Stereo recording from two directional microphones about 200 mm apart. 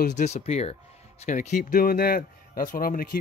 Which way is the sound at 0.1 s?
35° left (ahead or behind).